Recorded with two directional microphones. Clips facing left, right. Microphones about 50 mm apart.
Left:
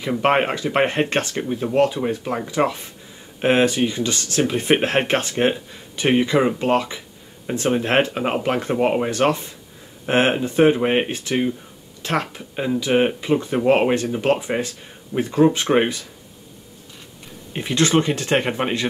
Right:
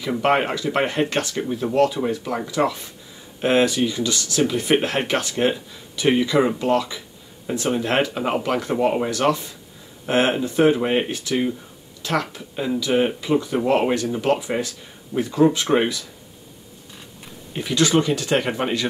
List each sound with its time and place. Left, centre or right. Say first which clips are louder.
0.2 s speech: left 1 dB; left
17.5 s speech: even; left
18.5 s speech: left 1 dB; centre